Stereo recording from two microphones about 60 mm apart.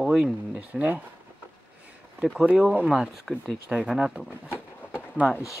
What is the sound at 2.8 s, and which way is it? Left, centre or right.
Speech, centre.